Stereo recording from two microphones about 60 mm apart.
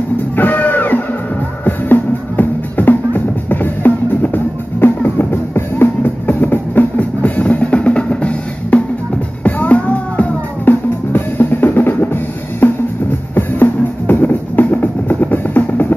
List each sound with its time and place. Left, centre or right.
0.4 s music: left